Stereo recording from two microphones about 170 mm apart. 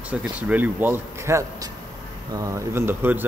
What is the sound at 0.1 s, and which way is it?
Speech, 10° right (ahead or behind).